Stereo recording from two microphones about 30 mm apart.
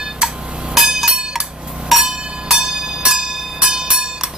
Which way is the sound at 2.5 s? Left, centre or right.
Right.